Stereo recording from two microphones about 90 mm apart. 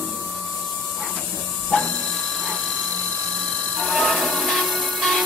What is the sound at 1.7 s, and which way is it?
Printer, 15° left (ahead or behind).